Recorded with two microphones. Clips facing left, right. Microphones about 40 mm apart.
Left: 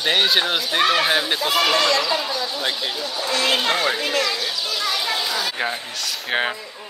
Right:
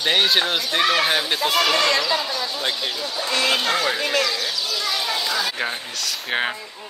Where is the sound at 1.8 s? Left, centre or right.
Right.